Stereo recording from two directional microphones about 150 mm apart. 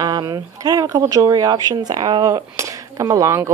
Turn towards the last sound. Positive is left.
turn(degrees=-20)  # may be behind; listen again after turning